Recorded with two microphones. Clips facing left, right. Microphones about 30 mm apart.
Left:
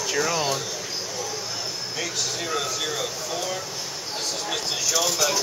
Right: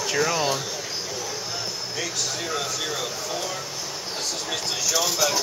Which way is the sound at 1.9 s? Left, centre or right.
Centre.